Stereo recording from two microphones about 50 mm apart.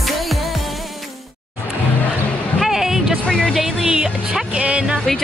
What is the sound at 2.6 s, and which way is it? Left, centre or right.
Music, centre.